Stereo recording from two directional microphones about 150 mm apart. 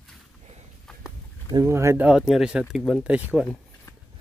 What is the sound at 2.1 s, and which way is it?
Speech, 5° right (ahead or behind).